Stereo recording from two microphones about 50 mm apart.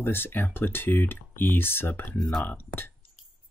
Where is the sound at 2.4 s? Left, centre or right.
Left.